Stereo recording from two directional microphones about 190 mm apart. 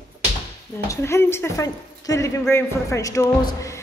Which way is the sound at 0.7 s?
15° left (ahead or behind).